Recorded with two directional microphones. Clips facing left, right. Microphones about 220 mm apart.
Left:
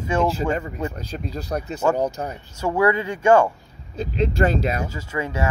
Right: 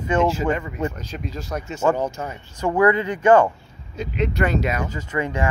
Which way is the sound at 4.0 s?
30° left (ahead or behind).